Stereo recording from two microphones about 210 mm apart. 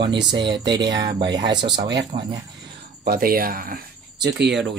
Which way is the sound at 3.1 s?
45° right (ahead or behind).